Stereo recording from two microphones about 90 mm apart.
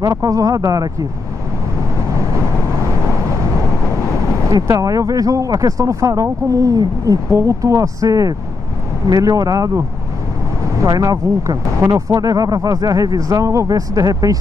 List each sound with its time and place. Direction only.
0.0 s speech: 40° right (ahead or behind)
4.6 s speech: 40° right (ahead or behind)